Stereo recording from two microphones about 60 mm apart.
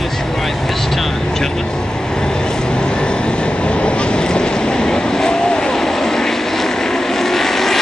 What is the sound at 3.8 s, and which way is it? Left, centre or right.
Vehicle, centre.